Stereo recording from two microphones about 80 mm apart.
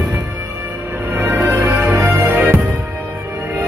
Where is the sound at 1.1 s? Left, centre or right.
Right.